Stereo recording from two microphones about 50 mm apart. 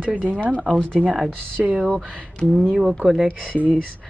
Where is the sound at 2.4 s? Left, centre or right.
Left.